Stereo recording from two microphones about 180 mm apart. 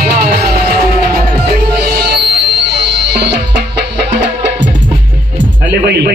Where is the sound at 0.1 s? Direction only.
60° right (ahead or behind).